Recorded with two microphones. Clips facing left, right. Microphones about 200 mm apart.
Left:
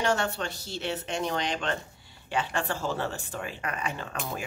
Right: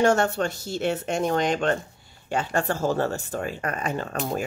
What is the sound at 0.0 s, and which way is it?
Speech, 45° right (ahead or behind).